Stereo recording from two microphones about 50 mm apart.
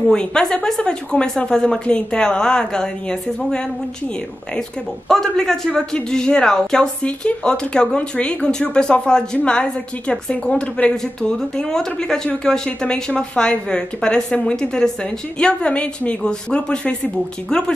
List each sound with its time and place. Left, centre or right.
0.1 s a woman's voice: centre